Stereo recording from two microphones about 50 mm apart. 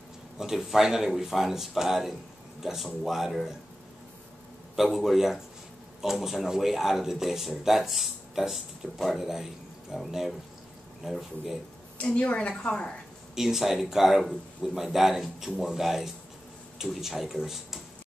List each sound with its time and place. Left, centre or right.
0.4 s speech: centre
4.9 s speech: centre
12.0 s speech: left
13.3 s speech: centre